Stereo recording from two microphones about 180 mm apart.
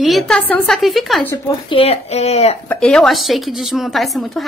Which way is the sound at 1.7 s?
35° left (ahead or behind).